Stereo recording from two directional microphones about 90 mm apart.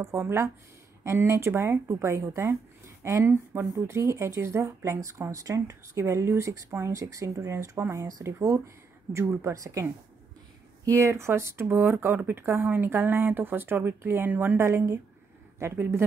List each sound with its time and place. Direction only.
0.0 s speech: 25° right (ahead or behind)
10.9 s speech: 35° right (ahead or behind)
14.7 s speech: 35° right (ahead or behind)